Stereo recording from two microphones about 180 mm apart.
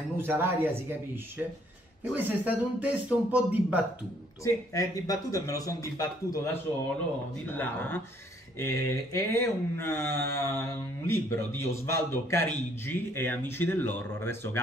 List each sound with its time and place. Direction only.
0.2 s speech: 10° right (ahead or behind)
4.4 s speech: 20° left (ahead or behind)